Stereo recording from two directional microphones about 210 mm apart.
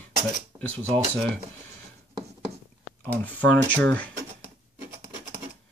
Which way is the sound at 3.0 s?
5° left (ahead or behind).